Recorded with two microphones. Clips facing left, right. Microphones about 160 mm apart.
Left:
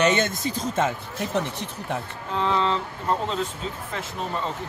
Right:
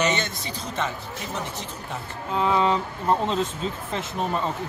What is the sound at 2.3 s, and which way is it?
Speech, 10° right (ahead or behind).